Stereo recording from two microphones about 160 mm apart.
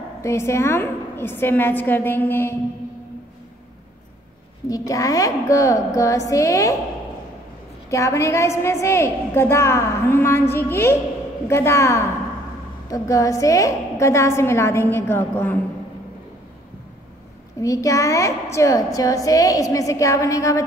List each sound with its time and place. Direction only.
0.2 s a woman's voice: 15° left (ahead or behind)
4.6 s a woman's voice: 20° left (ahead or behind)
7.9 s a woman's voice: 20° left (ahead or behind)
17.6 s a woman's voice: 20° left (ahead or behind)